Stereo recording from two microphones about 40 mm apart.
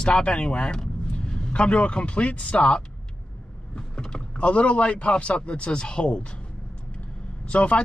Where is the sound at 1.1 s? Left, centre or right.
Left.